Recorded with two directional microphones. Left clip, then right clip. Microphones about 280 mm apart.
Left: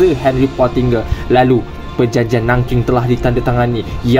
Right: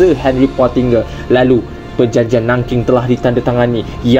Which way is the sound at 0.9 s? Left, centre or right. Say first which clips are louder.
Right 1 dB; centre.